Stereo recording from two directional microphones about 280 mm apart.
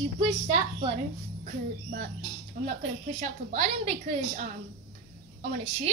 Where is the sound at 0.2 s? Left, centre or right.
Centre.